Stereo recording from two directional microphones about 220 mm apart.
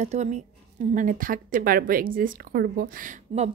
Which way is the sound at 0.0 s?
30° right (ahead or behind).